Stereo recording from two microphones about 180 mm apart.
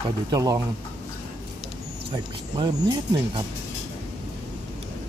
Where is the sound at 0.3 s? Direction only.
20° right (ahead or behind).